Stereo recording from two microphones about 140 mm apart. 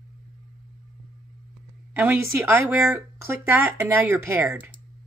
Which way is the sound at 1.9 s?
15° right (ahead or behind).